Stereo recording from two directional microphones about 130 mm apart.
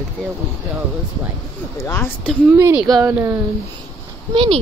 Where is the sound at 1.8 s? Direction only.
15° left (ahead or behind).